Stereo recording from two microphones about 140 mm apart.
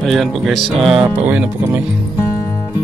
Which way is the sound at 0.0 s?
Centre (ahead or behind).